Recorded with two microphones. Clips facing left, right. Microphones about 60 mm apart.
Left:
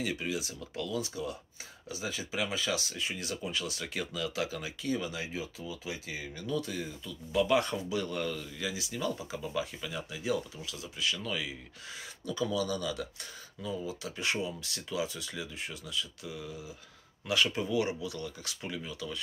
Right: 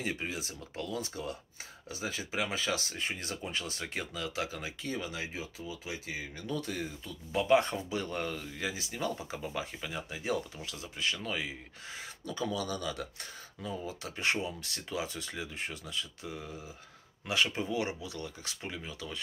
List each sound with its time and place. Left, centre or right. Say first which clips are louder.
0.0 s speech: left 2 dB; right
7.3 s speech: right 1 dB; right
17.3 s speech: left 2 dB; right